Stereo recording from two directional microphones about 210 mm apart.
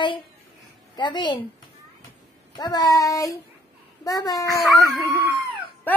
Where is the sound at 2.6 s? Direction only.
20° left (ahead or behind).